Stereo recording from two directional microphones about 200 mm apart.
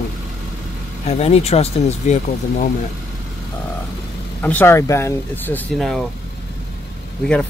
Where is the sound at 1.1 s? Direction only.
30° left (ahead or behind).